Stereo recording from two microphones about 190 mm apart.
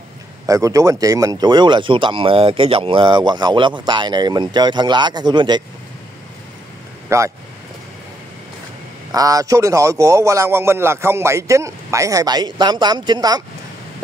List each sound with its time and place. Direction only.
0.5 s speech: 15° right (ahead or behind)
7.1 s speech: 15° right (ahead or behind)
9.1 s a man's voice: 20° right (ahead or behind)